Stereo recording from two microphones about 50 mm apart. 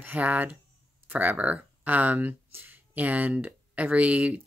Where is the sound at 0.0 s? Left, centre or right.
Right.